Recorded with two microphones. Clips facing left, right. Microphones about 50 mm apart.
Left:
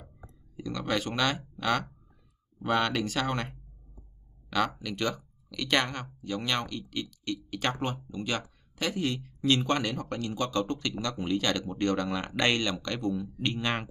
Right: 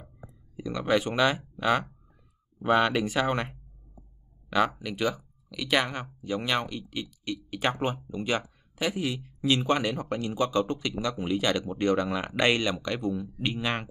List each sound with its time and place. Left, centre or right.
0.0 s speech: centre